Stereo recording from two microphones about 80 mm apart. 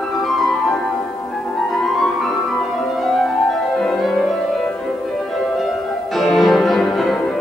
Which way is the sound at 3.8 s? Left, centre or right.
Centre.